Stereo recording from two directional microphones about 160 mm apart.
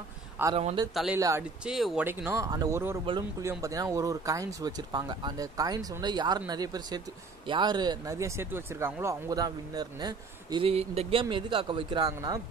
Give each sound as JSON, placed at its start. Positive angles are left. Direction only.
{"t": 0.4, "sound": "speech", "side_deg": -10}
{"t": 1.6, "sound": "speech", "side_deg": 0}
{"t": 2.0, "sound": "speech", "side_deg": -15}
{"t": 2.5, "sound": "speech", "side_deg": -25}
{"t": 3.4, "sound": "speech", "side_deg": -20}